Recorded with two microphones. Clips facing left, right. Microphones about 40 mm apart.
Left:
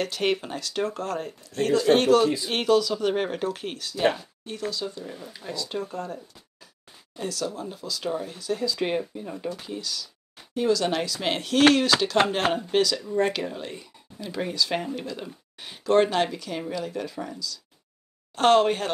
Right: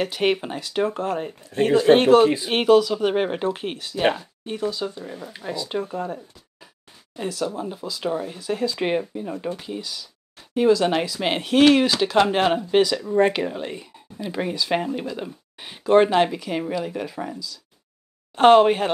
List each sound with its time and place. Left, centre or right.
0.0 s speech: centre
12.7 s speech: right